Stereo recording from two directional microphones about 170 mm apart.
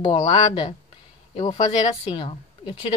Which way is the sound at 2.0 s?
30° left (ahead or behind).